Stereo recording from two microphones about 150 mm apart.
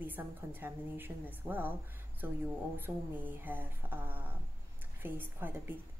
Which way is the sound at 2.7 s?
10° right (ahead or behind).